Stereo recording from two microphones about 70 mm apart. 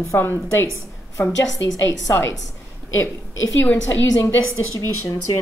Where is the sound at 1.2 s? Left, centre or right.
Left.